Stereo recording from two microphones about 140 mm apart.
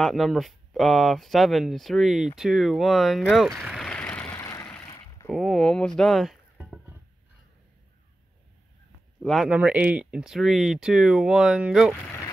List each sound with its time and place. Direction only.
0.0 s speech: centre (ahead or behind); by 4.6 s 20° left (ahead or behind)
4.8 s a sound: 25° left (ahead or behind)
5.3 s speech: centre (ahead or behind)
9.2 s speech: centre (ahead or behind)